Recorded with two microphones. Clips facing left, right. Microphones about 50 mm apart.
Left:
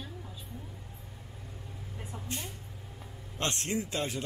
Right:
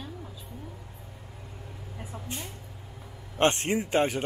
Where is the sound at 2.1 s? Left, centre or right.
Centre.